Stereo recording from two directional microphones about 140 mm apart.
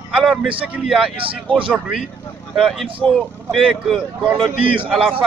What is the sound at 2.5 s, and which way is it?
Speech, centre (ahead or behind).